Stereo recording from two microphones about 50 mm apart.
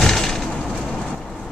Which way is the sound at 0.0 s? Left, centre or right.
Centre.